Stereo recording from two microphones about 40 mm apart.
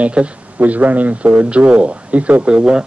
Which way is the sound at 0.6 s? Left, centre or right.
Right.